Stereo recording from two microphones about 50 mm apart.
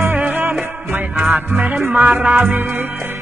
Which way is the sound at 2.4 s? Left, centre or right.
Right.